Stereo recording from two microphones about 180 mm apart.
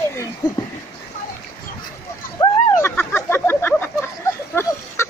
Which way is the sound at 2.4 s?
20° left (ahead or behind).